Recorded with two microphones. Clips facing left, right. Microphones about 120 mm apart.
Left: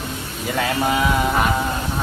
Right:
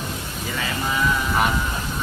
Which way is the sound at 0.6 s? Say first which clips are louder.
Left 6 dB; 65° left (ahead or behind).